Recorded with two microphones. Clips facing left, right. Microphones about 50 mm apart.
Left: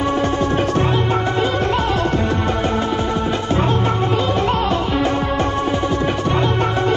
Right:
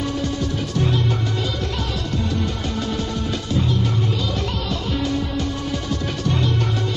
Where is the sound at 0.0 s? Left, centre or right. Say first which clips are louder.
Left 6 dB; left.